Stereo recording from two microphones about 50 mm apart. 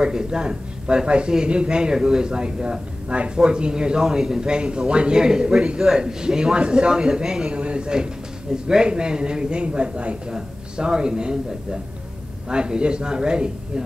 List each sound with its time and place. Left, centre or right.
0.0 s a man's voice: centre